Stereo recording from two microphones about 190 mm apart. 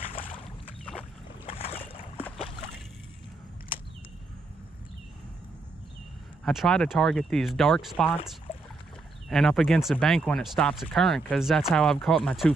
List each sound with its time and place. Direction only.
1.4 s boat: 30° left (ahead or behind)
6.4 s speech: centre (ahead or behind)
9.3 s speech: centre (ahead or behind)